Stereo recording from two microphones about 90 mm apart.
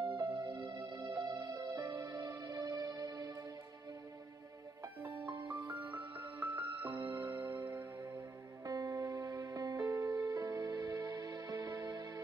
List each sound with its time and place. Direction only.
0.0 s music: 60° right (ahead or behind)
0.3 s music: 40° right (ahead or behind)
5.2 s music: 55° right (ahead or behind)
6.5 s music: 20° right (ahead or behind)
7.2 s music: 35° right (ahead or behind)